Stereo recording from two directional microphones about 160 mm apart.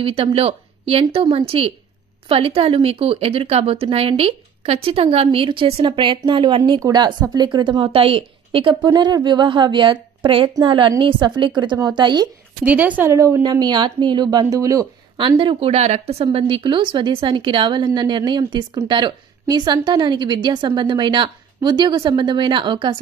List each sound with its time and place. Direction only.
0.0 s a woman's voice: 35° right (ahead or behind)
12.6 s a woman's voice: 10° right (ahead or behind)
15.1 s a woman's voice: 30° right (ahead or behind)